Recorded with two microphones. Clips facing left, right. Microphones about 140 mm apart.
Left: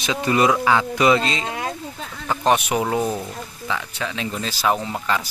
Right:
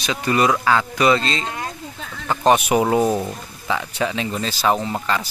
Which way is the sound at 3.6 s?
35° right (ahead or behind).